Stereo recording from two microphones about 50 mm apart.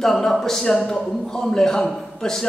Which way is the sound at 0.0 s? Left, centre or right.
Centre.